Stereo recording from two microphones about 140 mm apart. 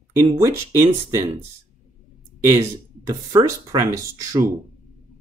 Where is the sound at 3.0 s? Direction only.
25° right (ahead or behind).